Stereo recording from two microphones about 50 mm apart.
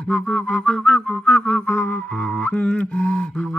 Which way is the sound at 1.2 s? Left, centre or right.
Left.